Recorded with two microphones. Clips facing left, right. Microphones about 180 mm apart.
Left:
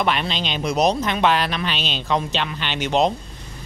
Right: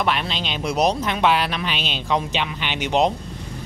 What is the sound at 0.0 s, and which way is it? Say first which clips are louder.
A man's voice: left 1 dB; 5° right (ahead or behind).